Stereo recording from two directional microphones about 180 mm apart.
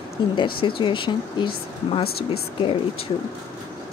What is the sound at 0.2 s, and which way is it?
Speech, 25° left (ahead or behind).